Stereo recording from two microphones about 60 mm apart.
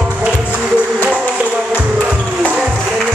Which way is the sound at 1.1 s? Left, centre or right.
Centre.